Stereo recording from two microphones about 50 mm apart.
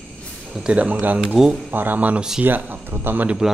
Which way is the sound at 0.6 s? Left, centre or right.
Right.